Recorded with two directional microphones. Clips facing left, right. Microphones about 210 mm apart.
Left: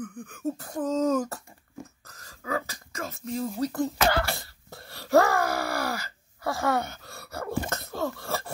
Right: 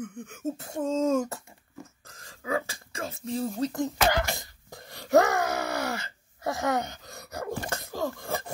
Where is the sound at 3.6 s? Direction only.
20° right (ahead or behind).